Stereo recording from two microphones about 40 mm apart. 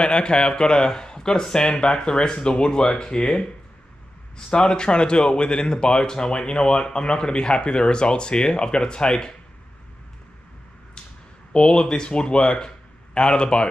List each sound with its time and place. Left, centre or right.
0.0 s speech: left
4.5 s speech: left
11.5 s speech: left